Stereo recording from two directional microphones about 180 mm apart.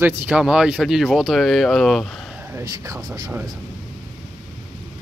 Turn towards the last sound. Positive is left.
turn(degrees=-25)  # may be behind; listen again after turning